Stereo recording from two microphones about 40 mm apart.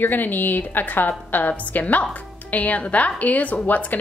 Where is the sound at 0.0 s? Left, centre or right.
Left.